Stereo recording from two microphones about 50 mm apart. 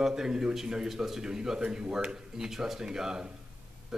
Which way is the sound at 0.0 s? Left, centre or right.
Centre.